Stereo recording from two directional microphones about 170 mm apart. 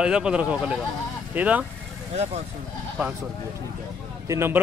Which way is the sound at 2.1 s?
40° right (ahead or behind).